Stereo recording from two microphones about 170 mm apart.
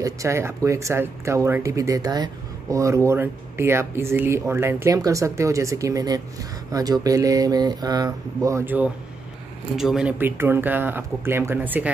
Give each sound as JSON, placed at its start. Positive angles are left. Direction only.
{"t": 0.0, "sound": "speech", "side_deg": -15}